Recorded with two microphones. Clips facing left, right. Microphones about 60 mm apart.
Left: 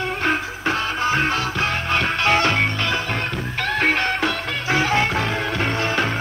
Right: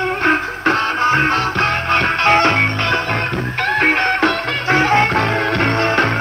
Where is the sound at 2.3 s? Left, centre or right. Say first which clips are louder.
Right 5 dB; right.